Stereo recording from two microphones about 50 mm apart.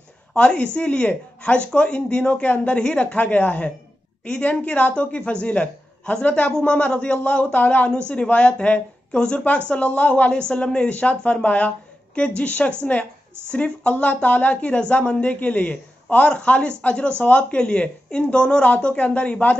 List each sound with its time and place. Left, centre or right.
0.3 s a woman's voice: centre
0.7 s speech: left